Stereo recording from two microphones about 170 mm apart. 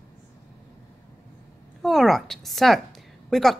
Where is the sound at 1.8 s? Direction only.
Centre (ahead or behind).